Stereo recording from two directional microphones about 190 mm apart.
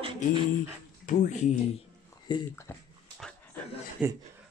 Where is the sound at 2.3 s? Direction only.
25° left (ahead or behind).